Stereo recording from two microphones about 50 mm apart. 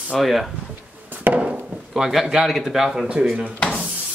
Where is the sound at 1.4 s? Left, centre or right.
Centre.